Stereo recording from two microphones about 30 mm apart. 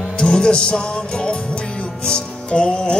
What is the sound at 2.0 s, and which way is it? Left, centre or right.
Music, left.